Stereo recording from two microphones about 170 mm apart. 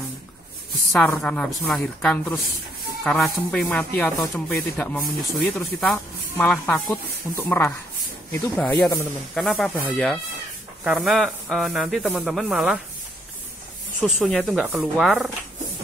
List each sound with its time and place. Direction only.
0.9 s speech: 5° left (ahead or behind)
14.0 s speech: centre (ahead or behind)